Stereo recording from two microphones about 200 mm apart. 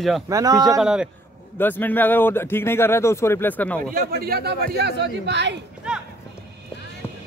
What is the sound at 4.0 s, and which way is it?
Speech, 50° right (ahead or behind).